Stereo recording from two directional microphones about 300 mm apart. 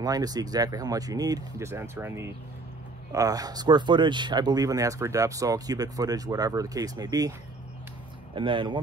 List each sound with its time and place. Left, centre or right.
0.0 s speech: centre
8.4 s speech: centre